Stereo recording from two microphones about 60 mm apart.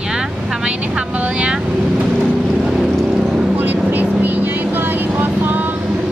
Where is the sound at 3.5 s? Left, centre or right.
Right.